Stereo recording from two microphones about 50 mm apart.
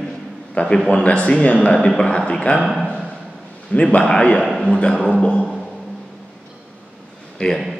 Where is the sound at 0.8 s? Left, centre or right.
Left.